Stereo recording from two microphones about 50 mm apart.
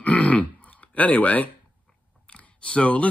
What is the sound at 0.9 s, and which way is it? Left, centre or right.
Speech, left.